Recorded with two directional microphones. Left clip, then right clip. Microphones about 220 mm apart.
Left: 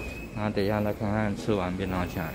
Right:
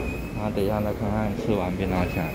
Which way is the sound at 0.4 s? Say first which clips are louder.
Right 1 dB; 30° left (ahead or behind).